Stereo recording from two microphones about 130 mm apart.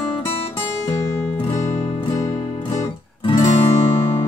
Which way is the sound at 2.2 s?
25° left (ahead or behind).